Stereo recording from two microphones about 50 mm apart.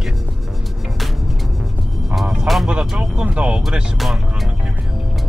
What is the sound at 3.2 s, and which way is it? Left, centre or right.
Speech, right.